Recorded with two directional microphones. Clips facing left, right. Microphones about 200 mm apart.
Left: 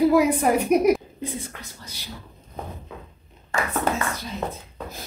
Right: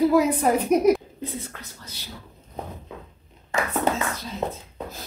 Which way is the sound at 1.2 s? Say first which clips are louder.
Left 1 dB; 10° left (ahead or behind).